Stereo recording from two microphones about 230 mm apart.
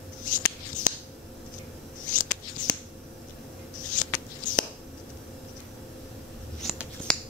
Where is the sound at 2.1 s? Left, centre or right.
Left.